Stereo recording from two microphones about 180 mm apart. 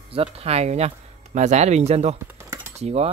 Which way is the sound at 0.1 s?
35° right (ahead or behind).